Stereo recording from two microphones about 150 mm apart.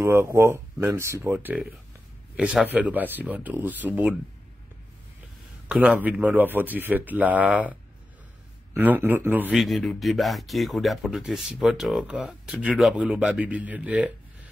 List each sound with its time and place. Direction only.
0.0 s speech: 15° right (ahead or behind)
5.7 s speech: 10° right (ahead or behind)
8.7 s speech: 10° right (ahead or behind)
9.6 s speech: centre (ahead or behind)